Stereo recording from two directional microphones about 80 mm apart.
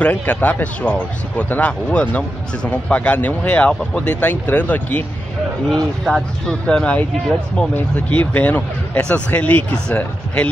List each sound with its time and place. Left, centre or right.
0.0 s speech: centre
5.7 s speech: centre